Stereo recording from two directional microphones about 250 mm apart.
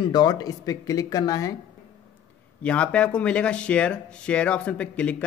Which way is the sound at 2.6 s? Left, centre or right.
Centre.